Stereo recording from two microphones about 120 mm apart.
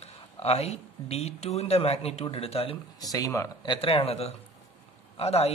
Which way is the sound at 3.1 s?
25° left (ahead or behind).